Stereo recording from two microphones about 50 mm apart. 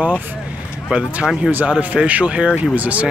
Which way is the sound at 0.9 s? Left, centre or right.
Right.